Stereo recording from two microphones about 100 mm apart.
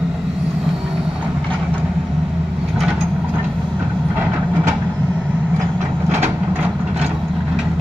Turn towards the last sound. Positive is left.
turn(degrees=-25)  # may be behind; listen again after turning